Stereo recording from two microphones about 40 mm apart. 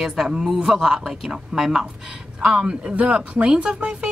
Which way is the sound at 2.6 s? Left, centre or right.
Right.